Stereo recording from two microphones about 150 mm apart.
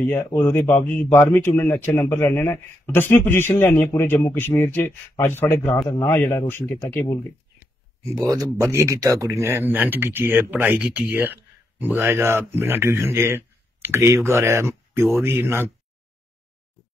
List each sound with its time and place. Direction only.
0.0 s a man's voice: 15° left (ahead or behind)
8.2 s speech: 25° right (ahead or behind)